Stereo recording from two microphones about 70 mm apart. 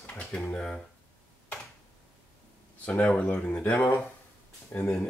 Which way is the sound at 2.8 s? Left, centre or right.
Centre.